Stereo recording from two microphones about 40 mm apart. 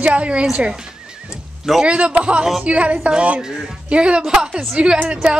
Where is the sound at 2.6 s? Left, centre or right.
Right.